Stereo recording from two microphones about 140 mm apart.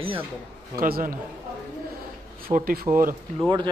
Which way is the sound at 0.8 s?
85° right.